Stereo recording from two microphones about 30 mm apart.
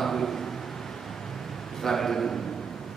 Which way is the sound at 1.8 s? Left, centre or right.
Centre.